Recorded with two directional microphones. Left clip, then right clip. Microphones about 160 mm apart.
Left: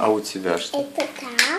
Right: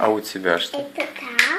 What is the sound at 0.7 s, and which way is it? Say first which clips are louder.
Speech: left 2 dB; 15° left (ahead or behind).